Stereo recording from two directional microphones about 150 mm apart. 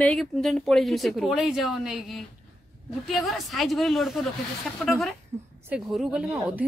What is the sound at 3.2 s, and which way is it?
Speech, centre (ahead or behind).